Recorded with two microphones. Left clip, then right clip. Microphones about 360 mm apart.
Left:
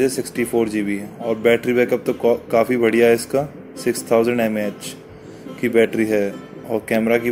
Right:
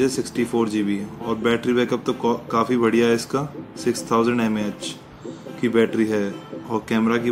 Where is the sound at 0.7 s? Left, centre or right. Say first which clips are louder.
Left 1 dB; right.